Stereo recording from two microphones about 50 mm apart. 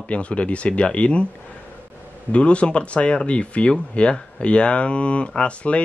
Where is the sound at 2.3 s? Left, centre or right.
Left.